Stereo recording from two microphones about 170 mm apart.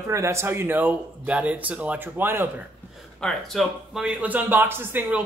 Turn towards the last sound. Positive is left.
turn(degrees=-10)  # may be behind; listen again after turning